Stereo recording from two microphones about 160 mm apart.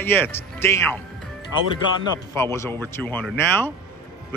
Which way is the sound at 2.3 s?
15° left (ahead or behind).